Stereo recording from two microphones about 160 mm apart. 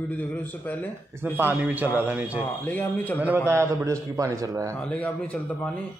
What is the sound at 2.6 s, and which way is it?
Speech, 10° left (ahead or behind).